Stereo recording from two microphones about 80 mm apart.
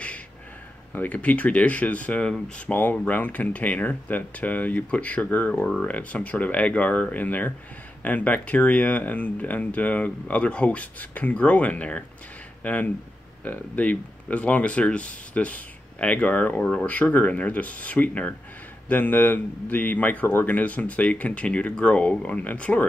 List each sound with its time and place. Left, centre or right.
0.9 s speech: centre